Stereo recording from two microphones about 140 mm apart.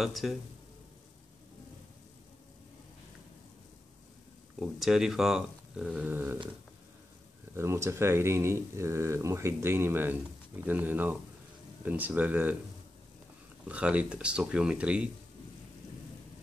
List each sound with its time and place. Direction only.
0.0 s speech: centre (ahead or behind)
4.6 s speech: centre (ahead or behind)
7.5 s speech: 20° right (ahead or behind)
13.7 s speech: 10° right (ahead or behind)